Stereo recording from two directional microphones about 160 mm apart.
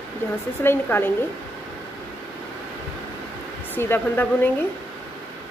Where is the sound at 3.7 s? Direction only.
15° left (ahead or behind).